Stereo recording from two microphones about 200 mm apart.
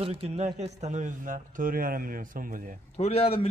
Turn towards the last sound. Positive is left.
turn(degrees=30)  # may be behind; listen again after turning